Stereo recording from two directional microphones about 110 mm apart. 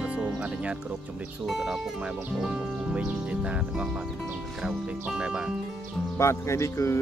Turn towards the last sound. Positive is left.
turn(degrees=25)  # may be behind; listen again after turning